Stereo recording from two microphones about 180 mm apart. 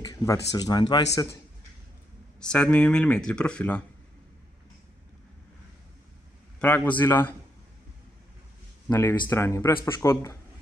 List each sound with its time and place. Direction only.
0.0 s a sound: 20° left (ahead or behind)
0.5 s a man's voice: 20° left (ahead or behind)
2.4 s speech: 5° left (ahead or behind)
6.6 s a man's voice: 10° left (ahead or behind)
8.8 s a man's voice: 15° left (ahead or behind)